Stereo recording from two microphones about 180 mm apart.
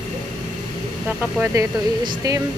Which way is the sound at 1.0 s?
15° right (ahead or behind).